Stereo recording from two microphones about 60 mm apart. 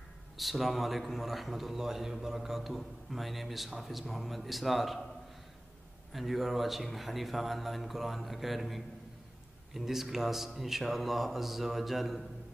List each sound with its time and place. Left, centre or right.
0.4 s a man's voice: centre
6.1 s a man's voice: centre